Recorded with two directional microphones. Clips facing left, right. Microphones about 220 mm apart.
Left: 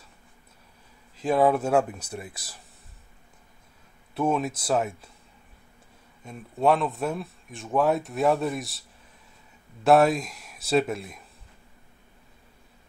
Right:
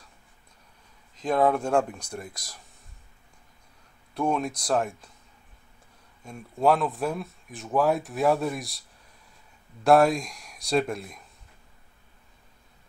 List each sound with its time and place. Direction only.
1.2 s speech: 5° left (ahead or behind)
4.1 s speech: 5° left (ahead or behind)
6.2 s speech: centre (ahead or behind)
9.8 s speech: centre (ahead or behind)